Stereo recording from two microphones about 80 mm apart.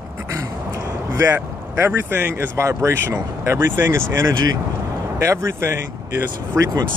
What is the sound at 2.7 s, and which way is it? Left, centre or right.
Speech, right.